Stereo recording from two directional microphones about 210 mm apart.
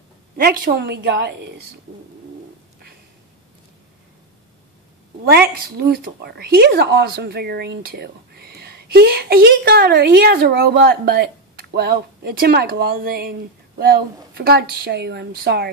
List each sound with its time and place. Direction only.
0.4 s speech: 45° right (ahead or behind)
5.5 s speech: 45° right (ahead or behind)